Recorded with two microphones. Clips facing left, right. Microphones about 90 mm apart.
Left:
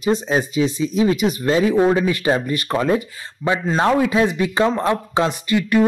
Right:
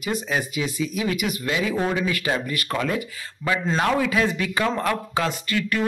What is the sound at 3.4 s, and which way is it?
Speech, 10° left (ahead or behind).